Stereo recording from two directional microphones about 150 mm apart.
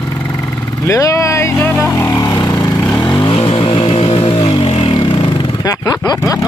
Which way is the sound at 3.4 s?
35° left (ahead or behind).